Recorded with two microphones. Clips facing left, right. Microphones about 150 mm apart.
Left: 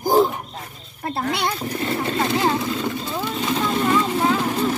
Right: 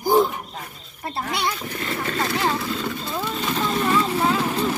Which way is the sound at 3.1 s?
15° left (ahead or behind).